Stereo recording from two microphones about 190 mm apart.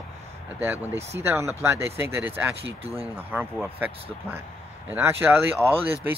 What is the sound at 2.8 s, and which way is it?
Speech, 30° right (ahead or behind).